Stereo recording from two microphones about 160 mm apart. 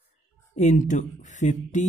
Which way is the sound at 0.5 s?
50° left (ahead or behind).